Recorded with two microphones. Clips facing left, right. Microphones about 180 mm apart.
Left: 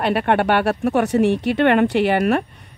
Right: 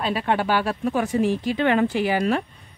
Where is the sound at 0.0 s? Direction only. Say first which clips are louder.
Left 5 dB; 65° left (ahead or behind).